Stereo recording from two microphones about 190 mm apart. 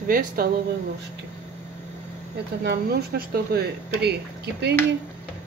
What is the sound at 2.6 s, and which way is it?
Speech, 55° right (ahead or behind).